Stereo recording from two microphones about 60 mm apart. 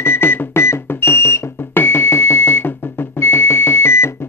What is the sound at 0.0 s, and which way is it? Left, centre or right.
Music, left.